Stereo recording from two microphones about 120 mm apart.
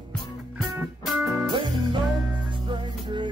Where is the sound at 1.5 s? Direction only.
40° right (ahead or behind).